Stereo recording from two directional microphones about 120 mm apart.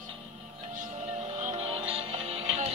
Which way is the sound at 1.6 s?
55° right (ahead or behind).